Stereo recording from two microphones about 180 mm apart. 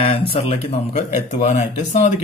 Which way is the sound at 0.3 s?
30° left (ahead or behind).